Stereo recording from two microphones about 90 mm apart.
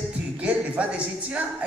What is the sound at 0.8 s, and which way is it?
Speech, 10° right (ahead or behind).